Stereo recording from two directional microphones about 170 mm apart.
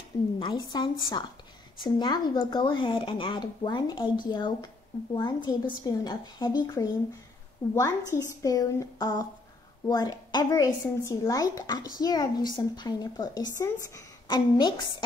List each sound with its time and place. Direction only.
0.4 s speech: 25° left (ahead or behind)